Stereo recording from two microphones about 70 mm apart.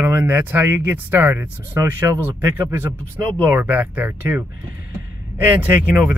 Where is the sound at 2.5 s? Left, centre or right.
Right.